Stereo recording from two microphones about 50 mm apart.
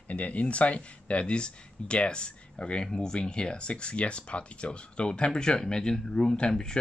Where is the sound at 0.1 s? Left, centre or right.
Left.